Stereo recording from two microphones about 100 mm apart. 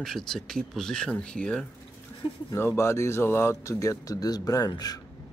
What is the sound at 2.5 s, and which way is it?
A man's voice, 25° left (ahead or behind).